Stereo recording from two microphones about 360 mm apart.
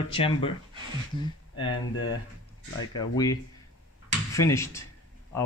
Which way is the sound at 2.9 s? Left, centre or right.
Centre.